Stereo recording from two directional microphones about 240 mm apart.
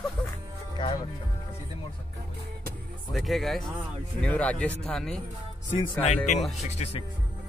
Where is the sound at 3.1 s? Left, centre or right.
Centre.